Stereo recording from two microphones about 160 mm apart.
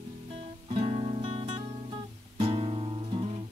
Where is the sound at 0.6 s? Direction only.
35° right (ahead or behind).